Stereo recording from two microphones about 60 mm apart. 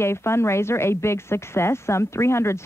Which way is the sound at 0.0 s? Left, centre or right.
Left.